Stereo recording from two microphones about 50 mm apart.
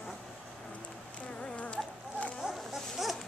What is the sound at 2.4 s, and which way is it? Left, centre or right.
Dog, centre.